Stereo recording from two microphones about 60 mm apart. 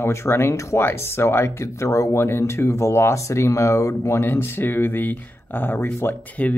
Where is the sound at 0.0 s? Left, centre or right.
Left.